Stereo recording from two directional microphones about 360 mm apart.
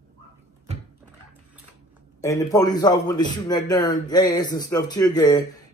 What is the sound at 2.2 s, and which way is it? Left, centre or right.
A man's voice, centre.